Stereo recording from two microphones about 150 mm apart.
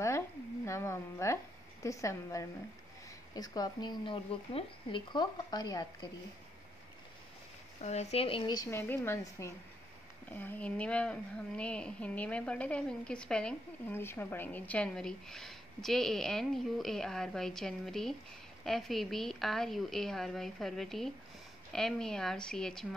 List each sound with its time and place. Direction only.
0.7 s a woman's voice: 20° left (ahead or behind)
7.8 s a woman's voice: 45° left (ahead or behind); by 22.8 s 5° left (ahead or behind)